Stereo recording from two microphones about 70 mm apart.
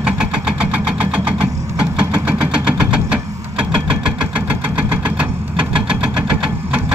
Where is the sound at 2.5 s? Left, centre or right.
Centre.